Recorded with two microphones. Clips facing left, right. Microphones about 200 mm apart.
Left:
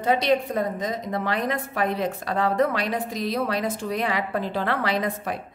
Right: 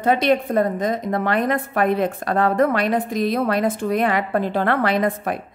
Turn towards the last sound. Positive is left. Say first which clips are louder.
# right 5 dB
turn(degrees=-55)  # may be behind; listen again after turning